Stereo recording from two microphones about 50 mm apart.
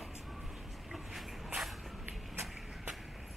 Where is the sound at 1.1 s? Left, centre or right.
Centre.